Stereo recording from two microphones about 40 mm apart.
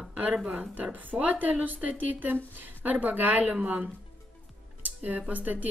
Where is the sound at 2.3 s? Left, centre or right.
Right.